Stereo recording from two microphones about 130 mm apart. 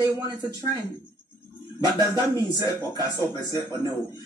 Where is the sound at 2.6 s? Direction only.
30° left (ahead or behind).